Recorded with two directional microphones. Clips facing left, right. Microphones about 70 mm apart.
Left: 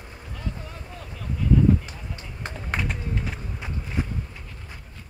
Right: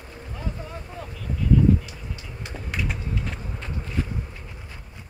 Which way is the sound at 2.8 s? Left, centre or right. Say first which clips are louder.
Right 2 dB; left.